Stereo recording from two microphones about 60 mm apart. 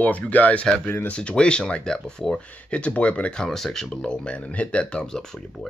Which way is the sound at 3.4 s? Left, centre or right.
Centre.